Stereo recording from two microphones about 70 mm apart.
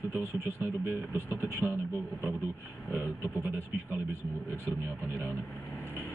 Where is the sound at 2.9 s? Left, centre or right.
Right.